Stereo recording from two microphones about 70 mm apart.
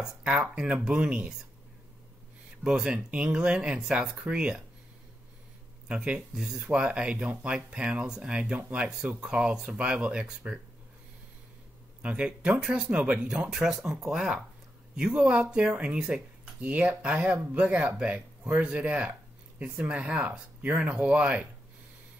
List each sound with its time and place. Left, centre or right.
0.0 s speech: centre
2.6 s speech: centre
5.9 s speech: centre
12.0 s speech: centre